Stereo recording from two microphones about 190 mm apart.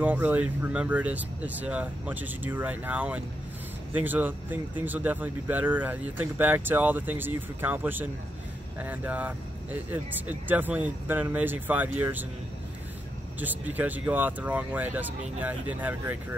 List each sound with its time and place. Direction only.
0.0 s speech: 10° right (ahead or behind)
13.4 s speech: 10° right (ahead or behind)